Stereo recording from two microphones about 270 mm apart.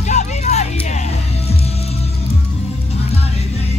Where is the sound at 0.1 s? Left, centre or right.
Left.